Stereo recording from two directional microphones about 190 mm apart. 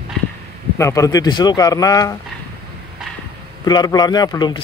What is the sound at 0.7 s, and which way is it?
Speech, 15° left (ahead or behind).